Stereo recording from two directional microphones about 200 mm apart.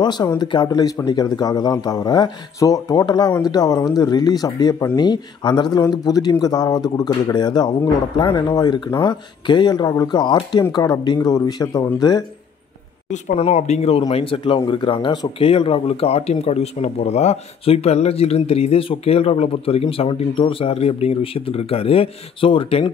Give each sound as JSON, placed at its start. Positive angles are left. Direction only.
{"t": 0.0, "sound": "speech", "side_deg": 20}
{"t": 13.1, "sound": "speech", "side_deg": 30}